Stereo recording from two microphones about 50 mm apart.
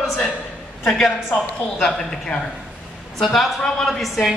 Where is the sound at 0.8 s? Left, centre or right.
Centre.